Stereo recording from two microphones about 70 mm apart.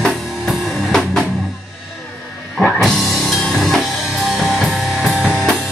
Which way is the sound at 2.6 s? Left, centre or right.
Centre.